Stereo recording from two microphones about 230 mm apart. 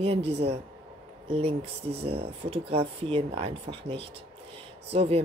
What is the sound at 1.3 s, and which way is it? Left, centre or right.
Speech, right.